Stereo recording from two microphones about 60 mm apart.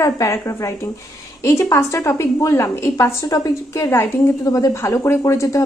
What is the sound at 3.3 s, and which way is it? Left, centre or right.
Speech, left.